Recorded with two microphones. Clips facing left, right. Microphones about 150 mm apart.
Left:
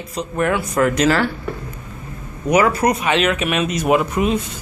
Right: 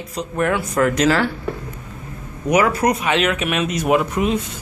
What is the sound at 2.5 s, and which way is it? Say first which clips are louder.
Speech: left 1 dB; 5° right (ahead or behind).